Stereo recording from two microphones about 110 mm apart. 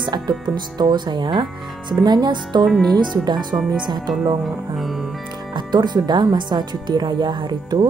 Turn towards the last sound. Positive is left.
turn(degrees=-40)  # may be behind; listen again after turning